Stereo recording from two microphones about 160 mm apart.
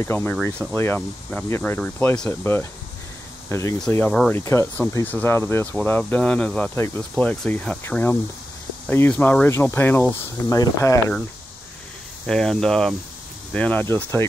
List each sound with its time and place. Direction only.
0.0 s speech: 15° left (ahead or behind)
3.9 s speech: 5° left (ahead or behind)
4.3 s speech: 15° left (ahead or behind)
12.3 s speech: 5° left (ahead or behind)